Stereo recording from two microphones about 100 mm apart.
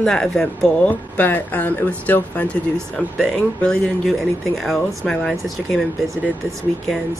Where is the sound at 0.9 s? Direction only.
15° left (ahead or behind).